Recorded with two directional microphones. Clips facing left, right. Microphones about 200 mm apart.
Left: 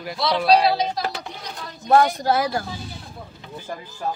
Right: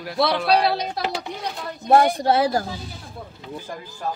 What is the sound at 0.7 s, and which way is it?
Speech, 60° right (ahead or behind).